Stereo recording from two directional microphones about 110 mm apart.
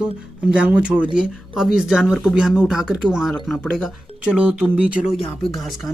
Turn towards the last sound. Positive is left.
turn(degrees=0)  # may be behind; listen again after turning